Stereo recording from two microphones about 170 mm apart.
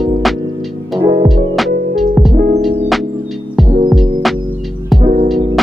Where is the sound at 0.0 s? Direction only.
Centre (ahead or behind).